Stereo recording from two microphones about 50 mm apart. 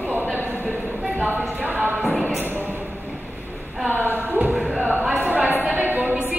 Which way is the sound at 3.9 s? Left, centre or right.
Right.